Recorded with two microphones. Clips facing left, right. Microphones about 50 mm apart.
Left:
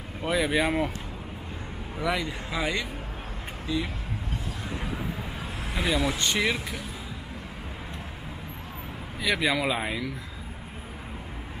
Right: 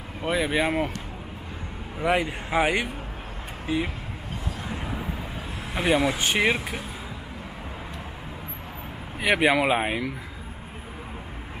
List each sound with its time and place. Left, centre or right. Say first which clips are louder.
0.2 s speech: right 1 dB; centre
2.0 s a man's voice: right 5 dB; right
5.8 s speech: right 4 dB; right
6.1 s speech: right 3 dB; centre
6.4 s speech: right 4 dB; right
9.2 s speech: right 5 dB; right